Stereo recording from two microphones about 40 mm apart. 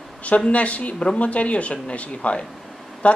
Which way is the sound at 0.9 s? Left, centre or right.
Left.